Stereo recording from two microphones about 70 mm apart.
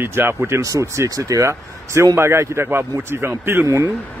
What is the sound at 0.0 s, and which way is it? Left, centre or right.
Speech, right.